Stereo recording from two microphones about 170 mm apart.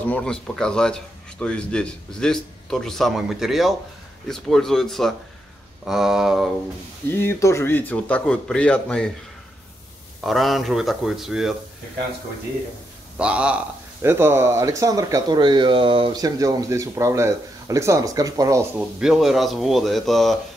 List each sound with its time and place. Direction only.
0.0 s a man's voice: 5° left (ahead or behind)
7.1 s speech: 15° left (ahead or behind)
10.2 s a man's voice: centre (ahead or behind)
13.2 s a man's voice: 5° right (ahead or behind)
18.8 s a man's voice: 5° right (ahead or behind)